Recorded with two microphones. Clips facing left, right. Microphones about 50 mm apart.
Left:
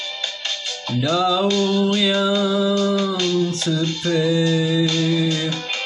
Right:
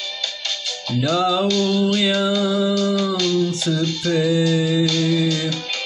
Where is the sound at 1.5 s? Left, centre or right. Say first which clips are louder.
Even; left.